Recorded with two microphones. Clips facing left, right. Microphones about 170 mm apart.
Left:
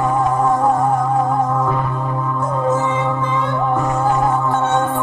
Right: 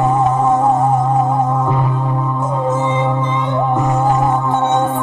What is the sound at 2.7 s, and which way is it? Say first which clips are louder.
Music: right 2 dB; 20° right (ahead or behind).